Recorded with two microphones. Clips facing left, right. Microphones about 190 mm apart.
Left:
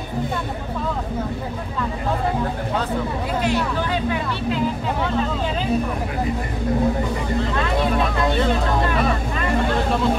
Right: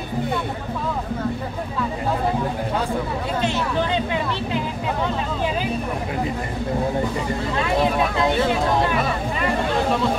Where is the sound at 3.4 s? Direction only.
25° right (ahead or behind).